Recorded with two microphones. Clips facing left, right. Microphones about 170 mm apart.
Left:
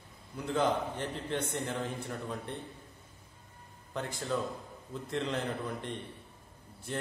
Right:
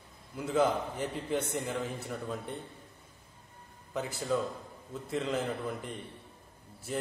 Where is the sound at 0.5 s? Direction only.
5° right (ahead or behind).